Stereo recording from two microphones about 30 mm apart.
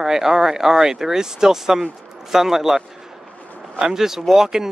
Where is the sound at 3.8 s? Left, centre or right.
Centre.